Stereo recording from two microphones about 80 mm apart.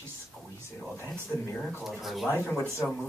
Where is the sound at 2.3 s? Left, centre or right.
Left.